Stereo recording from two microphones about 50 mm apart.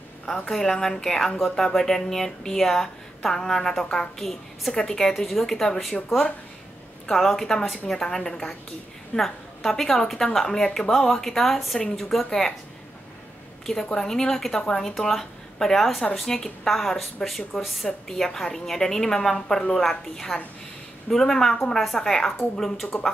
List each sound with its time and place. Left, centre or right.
0.5 s speech: centre
7.1 s speech: centre
13.9 s speech: centre
22.9 s speech: left